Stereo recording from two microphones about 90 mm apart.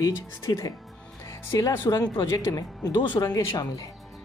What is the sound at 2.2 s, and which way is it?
Speech, 35° left (ahead or behind).